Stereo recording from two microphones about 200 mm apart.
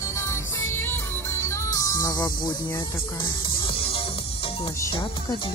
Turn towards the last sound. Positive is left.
turn(degrees=15)  # may be behind; listen again after turning